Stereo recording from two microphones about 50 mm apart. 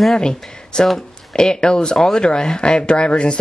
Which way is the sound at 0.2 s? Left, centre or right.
Centre.